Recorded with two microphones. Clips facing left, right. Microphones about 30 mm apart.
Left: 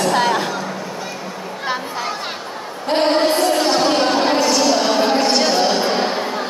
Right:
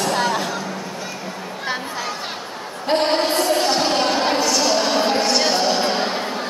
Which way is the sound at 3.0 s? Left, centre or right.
Centre.